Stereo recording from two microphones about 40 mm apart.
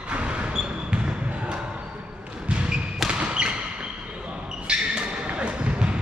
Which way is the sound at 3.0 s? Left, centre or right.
Right.